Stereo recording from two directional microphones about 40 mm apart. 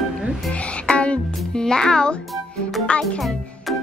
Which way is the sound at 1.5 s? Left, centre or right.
Centre.